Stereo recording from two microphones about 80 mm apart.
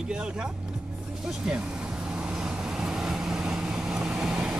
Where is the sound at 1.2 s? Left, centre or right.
Centre.